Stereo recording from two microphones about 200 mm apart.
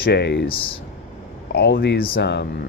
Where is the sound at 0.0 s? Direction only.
55° left (ahead or behind).